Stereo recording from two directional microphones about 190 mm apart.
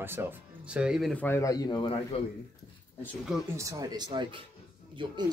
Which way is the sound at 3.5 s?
20° right (ahead or behind).